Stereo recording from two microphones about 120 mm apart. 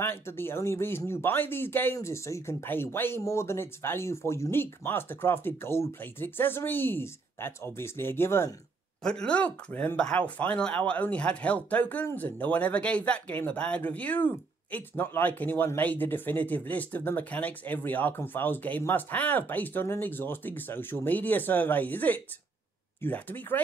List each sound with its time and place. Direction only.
0.0 s speech: 20° left (ahead or behind)
9.0 s speech: 5° left (ahead or behind)